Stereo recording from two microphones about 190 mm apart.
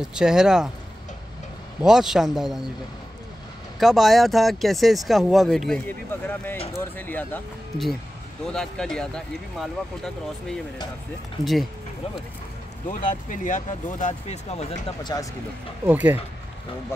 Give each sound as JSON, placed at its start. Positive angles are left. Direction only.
{"t": 0.1, "sound": "speech", "side_deg": -5}
{"t": 1.8, "sound": "speech", "side_deg": -5}
{"t": 3.8, "sound": "speech", "side_deg": 0}
{"t": 12.8, "sound": "speech", "side_deg": 40}
{"t": 15.1, "sound": "speech", "side_deg": 20}
{"t": 15.8, "sound": "speech", "side_deg": -10}